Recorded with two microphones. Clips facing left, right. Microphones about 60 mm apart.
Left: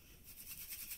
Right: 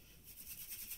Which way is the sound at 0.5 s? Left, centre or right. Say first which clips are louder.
Left 2 dB; left.